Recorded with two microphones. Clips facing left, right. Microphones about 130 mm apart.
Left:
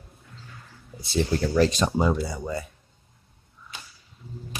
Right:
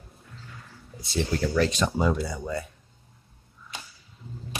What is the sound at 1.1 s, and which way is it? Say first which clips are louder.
Speech: left 2 dB; 30° left (ahead or behind).